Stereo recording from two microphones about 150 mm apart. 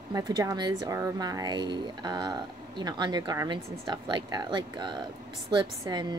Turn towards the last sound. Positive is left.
turn(degrees=-30)  # may be behind; listen again after turning